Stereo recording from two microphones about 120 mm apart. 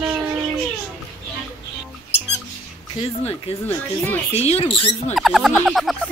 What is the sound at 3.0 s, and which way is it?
Speech, 55° left (ahead or behind).